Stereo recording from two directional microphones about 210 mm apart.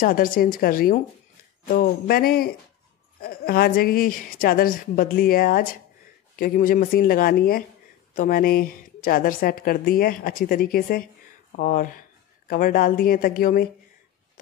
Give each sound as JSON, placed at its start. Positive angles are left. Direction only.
{"t": 0.0, "sound": "a woman's voice", "side_deg": 40}